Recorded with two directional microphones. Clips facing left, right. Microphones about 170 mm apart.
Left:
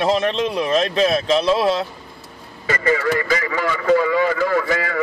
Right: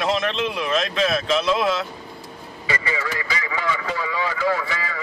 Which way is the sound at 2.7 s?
50° left (ahead or behind).